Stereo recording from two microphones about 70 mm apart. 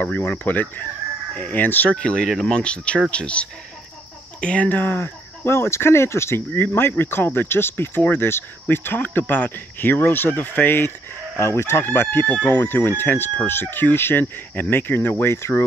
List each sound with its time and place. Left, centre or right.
0.0 s speech: left
11.3 s speech: left
15.3 s speech: left